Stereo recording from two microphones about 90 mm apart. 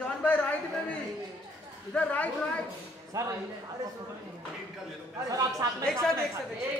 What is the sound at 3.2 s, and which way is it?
Speech, 35° right (ahead or behind).